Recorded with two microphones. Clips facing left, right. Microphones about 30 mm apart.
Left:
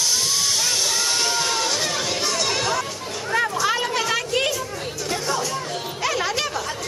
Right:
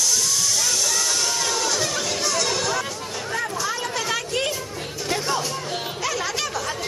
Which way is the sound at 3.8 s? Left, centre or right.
Left.